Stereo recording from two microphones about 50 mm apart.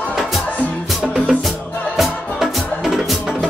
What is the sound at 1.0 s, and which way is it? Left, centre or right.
Music, centre.